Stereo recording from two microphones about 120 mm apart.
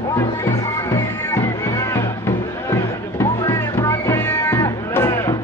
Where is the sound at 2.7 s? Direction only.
25° left (ahead or behind).